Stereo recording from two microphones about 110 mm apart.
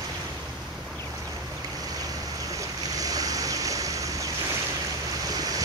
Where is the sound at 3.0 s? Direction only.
35° right (ahead or behind).